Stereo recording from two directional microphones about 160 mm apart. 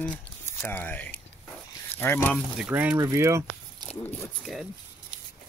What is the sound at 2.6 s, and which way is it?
Speech, 10° right (ahead or behind).